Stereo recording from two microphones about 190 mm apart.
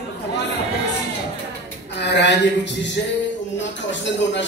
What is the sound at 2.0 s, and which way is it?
Speech, 65° left (ahead or behind).